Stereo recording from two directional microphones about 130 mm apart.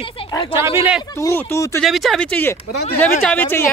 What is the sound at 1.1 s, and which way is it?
Speech, 20° left (ahead or behind).